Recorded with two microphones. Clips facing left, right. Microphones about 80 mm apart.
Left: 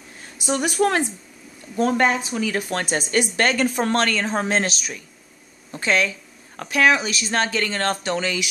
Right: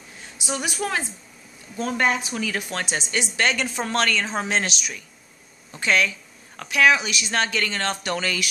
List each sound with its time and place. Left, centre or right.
0.5 s speech: left
2.7 s speech: left
8.1 s speech: left